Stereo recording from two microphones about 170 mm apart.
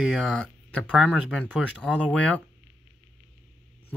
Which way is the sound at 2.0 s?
10° left (ahead or behind).